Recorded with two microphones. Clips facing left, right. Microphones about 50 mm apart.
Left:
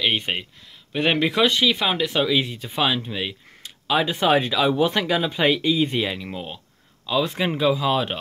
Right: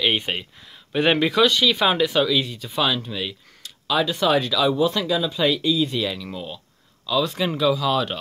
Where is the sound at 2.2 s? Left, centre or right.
Centre.